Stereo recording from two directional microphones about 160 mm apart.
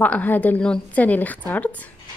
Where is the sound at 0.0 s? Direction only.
10° left (ahead or behind).